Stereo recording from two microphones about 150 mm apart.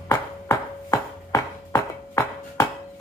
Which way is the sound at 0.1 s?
20° left (ahead or behind).